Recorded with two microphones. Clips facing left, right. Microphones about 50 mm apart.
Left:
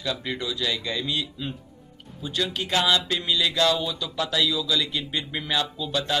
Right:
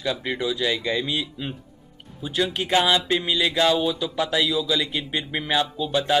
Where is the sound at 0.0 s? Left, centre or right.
Centre.